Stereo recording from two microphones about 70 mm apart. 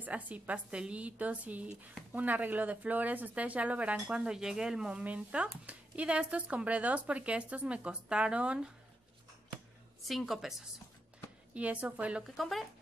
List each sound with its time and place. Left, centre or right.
0.0 s a woman's voice: right
10.0 s a woman's voice: centre
11.5 s a woman's voice: right
12.4 s a woman's voice: centre